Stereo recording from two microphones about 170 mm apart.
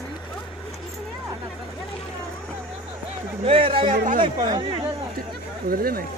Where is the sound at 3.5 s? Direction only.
30° right (ahead or behind).